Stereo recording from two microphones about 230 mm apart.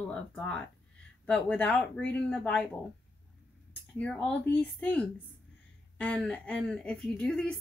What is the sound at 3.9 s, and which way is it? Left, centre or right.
Speech, centre.